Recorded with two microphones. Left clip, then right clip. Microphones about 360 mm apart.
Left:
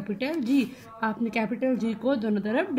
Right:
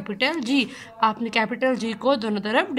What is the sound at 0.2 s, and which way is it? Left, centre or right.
A woman's voice, right.